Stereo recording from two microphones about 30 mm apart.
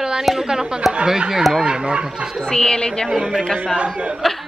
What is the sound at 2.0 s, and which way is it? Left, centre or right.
Speech, right.